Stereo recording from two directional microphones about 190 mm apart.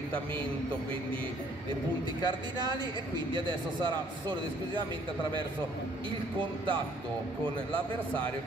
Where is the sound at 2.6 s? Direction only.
25° right (ahead or behind).